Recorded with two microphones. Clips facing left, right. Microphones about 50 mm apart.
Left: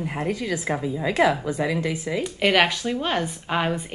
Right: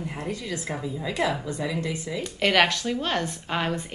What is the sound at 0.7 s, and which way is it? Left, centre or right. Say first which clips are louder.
Speech: left 6 dB; left.